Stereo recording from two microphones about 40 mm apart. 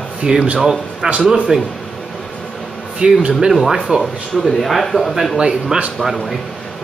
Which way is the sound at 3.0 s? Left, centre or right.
Right.